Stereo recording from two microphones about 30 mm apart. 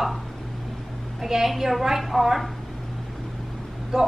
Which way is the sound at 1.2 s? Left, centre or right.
Centre.